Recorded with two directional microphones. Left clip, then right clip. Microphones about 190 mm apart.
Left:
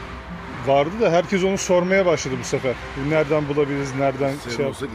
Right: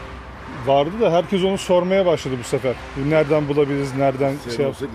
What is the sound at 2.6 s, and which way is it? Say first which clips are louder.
Speech: right 1 dB; 20° right (ahead or behind).